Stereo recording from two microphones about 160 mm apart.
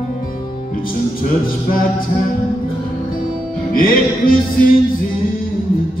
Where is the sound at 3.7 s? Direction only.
60° left (ahead or behind).